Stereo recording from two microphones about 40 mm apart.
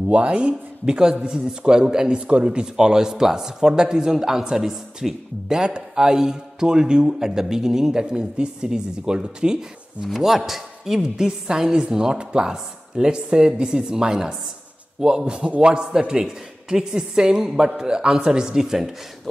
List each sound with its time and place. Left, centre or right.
0.1 s a man's voice: right
10.0 s a man's voice: centre